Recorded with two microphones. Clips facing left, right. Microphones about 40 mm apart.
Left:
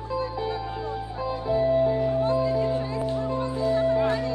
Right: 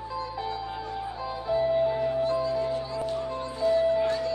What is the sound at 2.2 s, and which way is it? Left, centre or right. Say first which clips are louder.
Music: left 3 dB; left.